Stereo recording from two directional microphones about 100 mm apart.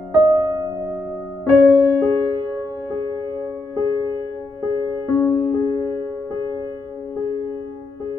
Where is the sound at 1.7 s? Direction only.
20° left (ahead or behind).